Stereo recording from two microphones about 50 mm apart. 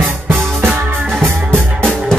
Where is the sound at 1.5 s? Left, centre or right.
Centre.